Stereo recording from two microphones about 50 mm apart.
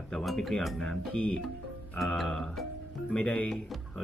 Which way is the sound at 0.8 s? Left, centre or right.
Centre.